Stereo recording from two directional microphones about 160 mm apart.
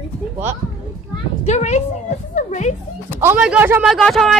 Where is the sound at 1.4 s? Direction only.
45° left (ahead or behind).